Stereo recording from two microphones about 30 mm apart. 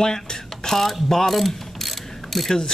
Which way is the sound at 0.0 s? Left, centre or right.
Left.